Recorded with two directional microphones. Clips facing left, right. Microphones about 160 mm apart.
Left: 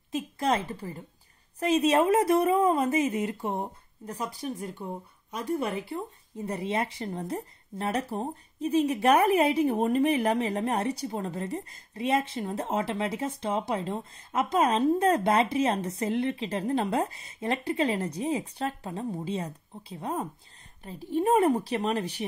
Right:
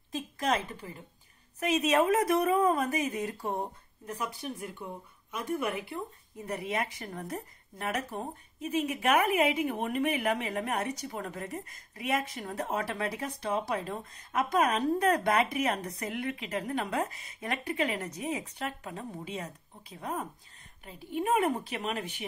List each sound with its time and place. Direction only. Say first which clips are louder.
0.1 s a woman's voice: left 3 dB; 30° left (ahead or behind)
4.2 s a woman's voice: left 4 dB; 35° left (ahead or behind)